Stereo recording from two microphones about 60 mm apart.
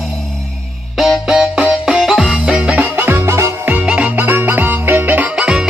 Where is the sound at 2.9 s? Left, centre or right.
Right.